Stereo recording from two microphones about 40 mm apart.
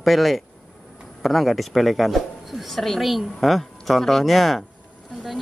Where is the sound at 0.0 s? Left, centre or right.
Centre.